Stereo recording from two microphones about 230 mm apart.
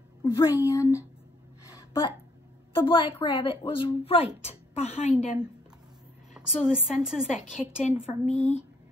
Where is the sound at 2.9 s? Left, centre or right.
Left.